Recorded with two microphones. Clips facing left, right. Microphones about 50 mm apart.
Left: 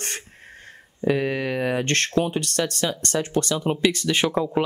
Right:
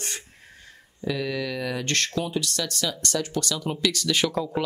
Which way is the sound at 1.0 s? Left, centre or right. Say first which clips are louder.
Left 5 dB; left.